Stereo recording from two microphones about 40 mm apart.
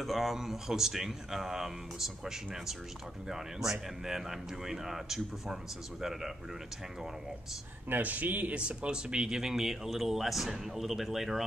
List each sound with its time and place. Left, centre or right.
0.0 s speech: centre
7.9 s speech: right
8.5 s speech: right
9.4 s speech: centre